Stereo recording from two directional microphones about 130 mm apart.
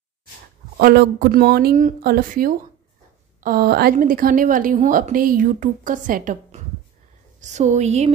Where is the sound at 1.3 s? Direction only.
85° right.